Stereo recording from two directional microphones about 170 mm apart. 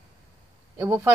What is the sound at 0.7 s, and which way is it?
Speech, 20° right (ahead or behind).